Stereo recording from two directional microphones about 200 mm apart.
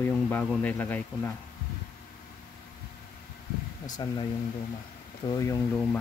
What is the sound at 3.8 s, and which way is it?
Speech, 20° left (ahead or behind).